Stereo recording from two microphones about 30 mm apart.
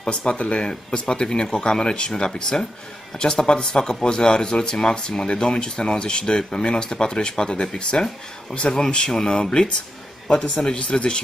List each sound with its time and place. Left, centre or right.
0.1 s speech: left